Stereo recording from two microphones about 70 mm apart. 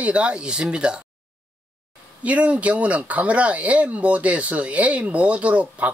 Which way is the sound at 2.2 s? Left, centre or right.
Centre.